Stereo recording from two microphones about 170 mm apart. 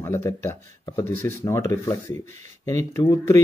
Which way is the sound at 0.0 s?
15° left (ahead or behind).